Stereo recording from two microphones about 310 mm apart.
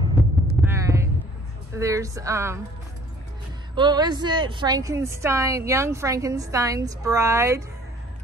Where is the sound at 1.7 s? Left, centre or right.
Centre.